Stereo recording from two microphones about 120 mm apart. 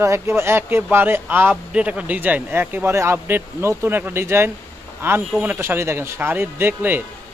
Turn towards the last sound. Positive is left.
turn(degrees=-15)  # may be behind; listen again after turning